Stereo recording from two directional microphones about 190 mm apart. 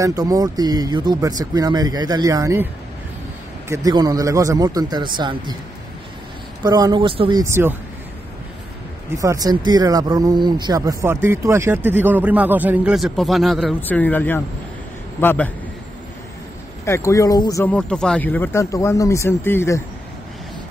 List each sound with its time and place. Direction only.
0.0 s speech: 20° right (ahead or behind)
6.6 s speech: 20° right (ahead or behind)
9.2 s speech: 20° right (ahead or behind); by 15.5 s 10° left (ahead or behind)
16.8 s speech: 15° left (ahead or behind)